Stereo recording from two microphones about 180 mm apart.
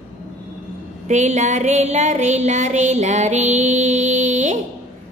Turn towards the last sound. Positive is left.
turn(degrees=-40)  # may be behind; listen again after turning